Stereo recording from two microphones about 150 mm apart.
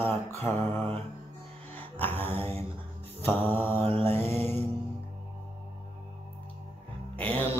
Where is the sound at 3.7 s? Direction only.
40° right (ahead or behind).